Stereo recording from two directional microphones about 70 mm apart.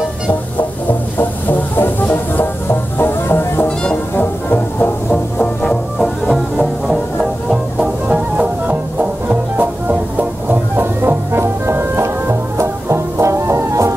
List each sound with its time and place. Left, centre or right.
1.1 s music: left
5.1 s music: centre
8.1 s music: centre; by 13.9 s right